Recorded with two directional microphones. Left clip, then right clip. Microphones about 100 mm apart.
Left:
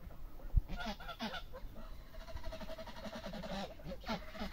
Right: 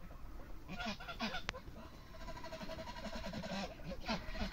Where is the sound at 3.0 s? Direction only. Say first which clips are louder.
Left 1 dB; 15° left (ahead or behind).